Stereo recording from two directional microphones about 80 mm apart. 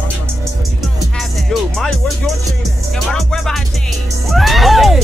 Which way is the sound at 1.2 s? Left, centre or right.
Centre.